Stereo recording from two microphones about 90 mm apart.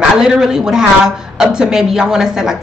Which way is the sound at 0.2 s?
5° right (ahead or behind).